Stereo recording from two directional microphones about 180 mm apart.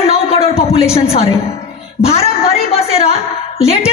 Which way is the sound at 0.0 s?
35° left (ahead or behind).